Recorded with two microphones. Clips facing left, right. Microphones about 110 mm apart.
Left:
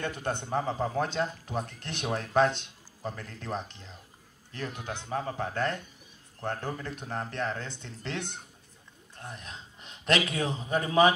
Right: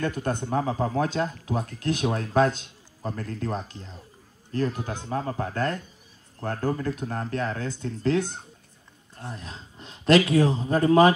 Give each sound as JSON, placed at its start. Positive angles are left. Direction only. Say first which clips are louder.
{"t": 0.0, "sound": "a man's voice", "louder": "right 5 dB", "side_deg": -40}